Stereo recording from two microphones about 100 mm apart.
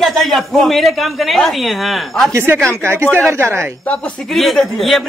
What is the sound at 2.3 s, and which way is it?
Speech, 25° right (ahead or behind).